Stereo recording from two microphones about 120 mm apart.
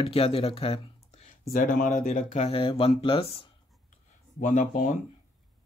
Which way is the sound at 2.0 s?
65° left (ahead or behind).